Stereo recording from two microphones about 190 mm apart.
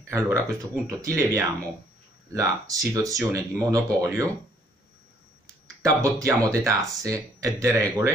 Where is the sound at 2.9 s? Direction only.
15° right (ahead or behind).